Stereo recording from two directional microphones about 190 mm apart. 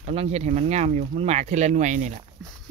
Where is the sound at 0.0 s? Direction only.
35° right (ahead or behind).